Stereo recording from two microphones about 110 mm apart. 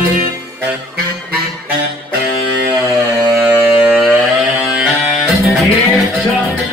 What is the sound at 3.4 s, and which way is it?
Music, 15° right (ahead or behind).